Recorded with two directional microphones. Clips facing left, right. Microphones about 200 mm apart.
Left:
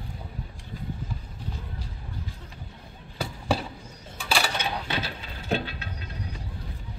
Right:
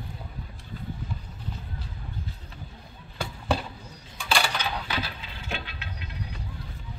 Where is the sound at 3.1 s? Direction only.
5° left (ahead or behind).